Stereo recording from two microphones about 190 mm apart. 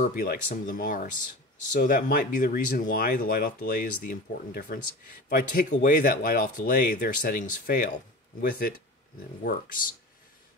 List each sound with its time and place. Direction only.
0.1 s speech: 50° left (ahead or behind)